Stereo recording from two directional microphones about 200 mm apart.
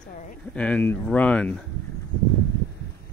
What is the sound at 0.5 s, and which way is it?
Speech, 5° left (ahead or behind).